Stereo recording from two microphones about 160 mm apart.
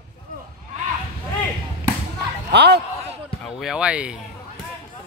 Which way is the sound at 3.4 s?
Centre (ahead or behind).